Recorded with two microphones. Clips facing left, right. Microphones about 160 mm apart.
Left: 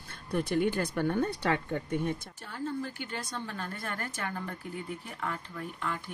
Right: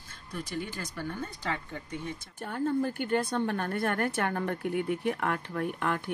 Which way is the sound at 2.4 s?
50° right (ahead or behind).